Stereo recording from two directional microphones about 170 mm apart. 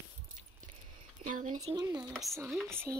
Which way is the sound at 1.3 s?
45° right (ahead or behind).